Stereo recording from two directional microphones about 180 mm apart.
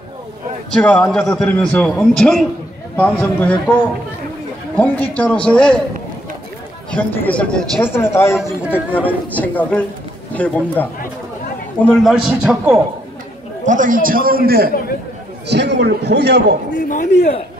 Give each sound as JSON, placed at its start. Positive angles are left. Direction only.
{"t": 0.7, "sound": "a man's voice", "side_deg": 5}
{"t": 4.7, "sound": "speech", "side_deg": 10}
{"t": 6.9, "sound": "a man's voice", "side_deg": 10}
{"t": 13.7, "sound": "a man's voice", "side_deg": -50}
{"t": 15.4, "sound": "a man's voice", "side_deg": -70}